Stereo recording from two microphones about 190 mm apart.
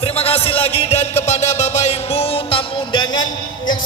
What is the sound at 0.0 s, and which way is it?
Music, 30° left (ahead or behind).